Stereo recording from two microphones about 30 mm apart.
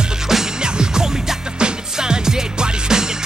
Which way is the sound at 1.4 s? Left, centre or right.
Right.